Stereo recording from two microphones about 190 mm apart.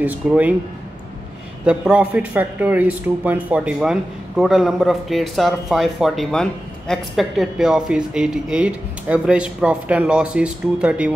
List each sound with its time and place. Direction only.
0.0 s speech: 10° right (ahead or behind)
1.6 s speech: 5° right (ahead or behind)